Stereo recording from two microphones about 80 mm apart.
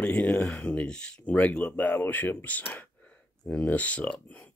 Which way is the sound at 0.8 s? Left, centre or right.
Centre.